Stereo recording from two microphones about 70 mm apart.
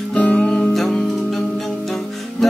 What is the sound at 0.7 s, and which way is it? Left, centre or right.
Music, centre.